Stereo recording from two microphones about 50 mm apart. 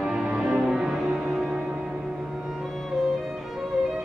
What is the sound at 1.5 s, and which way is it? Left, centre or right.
Music, right.